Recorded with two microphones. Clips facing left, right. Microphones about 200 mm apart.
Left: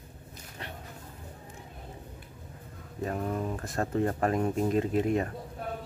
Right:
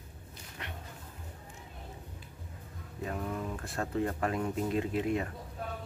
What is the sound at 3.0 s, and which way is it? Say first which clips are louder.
Speech: left 5 dB; 40° left (ahead or behind).